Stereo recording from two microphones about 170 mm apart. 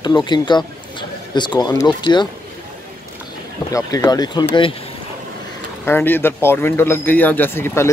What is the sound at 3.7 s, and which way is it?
Speech, 20° left (ahead or behind).